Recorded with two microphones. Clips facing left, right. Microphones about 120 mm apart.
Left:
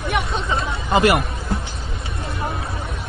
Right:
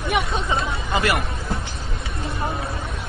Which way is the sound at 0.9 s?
25° left (ahead or behind).